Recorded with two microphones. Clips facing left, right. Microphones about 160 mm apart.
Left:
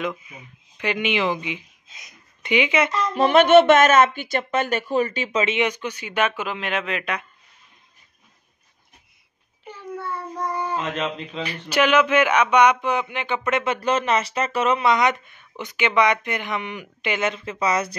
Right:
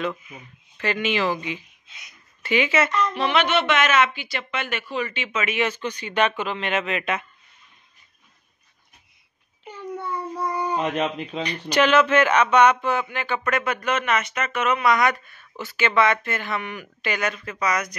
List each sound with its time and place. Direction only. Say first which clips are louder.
0.7 s speech: left 1 dB; 15° left (ahead or behind)
2.9 s speech: left 4 dB; 35° left (ahead or behind)
5.7 s speech: even; 10° left (ahead or behind)
9.9 s child singing: right 1 dB; 10° right (ahead or behind)
11.4 s speech: even; 5° left (ahead or behind); by 17.9 s 30° left (ahead or behind)